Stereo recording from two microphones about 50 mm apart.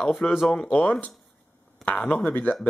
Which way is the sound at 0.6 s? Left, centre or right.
Left.